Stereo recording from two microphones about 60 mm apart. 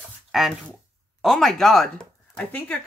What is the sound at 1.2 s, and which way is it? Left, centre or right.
Speech, centre.